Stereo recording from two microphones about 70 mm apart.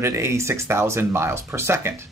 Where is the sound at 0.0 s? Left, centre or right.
Right.